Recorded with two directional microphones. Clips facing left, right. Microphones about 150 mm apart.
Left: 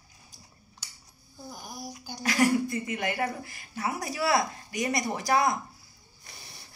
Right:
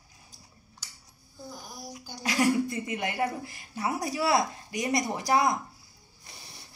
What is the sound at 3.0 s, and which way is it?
Speech, 25° right (ahead or behind).